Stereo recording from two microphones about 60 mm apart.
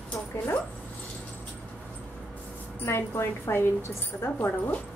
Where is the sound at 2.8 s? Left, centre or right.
Left.